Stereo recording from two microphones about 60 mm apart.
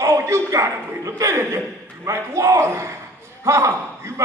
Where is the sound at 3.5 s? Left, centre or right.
Right.